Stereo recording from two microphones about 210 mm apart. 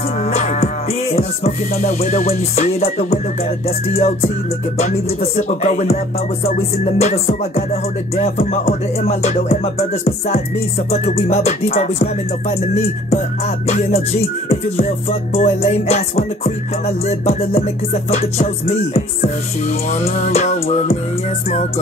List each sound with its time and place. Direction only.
0.2 s music: 35° left (ahead or behind)